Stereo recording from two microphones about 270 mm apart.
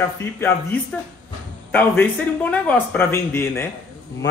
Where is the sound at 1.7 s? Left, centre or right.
Centre.